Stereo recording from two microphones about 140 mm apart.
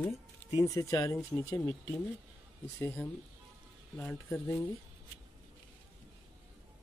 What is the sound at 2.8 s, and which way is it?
Speech, 15° left (ahead or behind).